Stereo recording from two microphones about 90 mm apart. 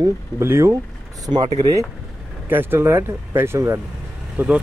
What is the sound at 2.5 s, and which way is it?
Speech, 25° right (ahead or behind).